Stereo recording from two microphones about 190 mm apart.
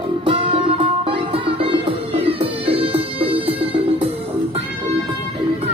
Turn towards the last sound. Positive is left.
turn(degrees=-30)  # may be behind; listen again after turning